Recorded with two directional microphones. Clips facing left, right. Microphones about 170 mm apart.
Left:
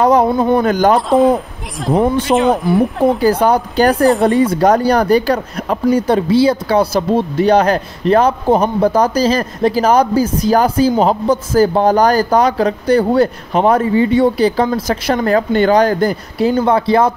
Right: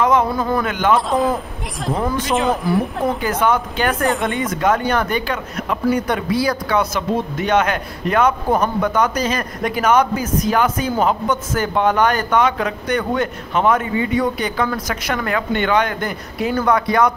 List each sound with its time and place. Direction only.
0.0 s speech: 35° left (ahead or behind)
0.9 s speech: centre (ahead or behind)
2.0 s speech: 30° left (ahead or behind)
2.2 s speech: centre (ahead or behind)
3.1 s speech: 35° left (ahead or behind)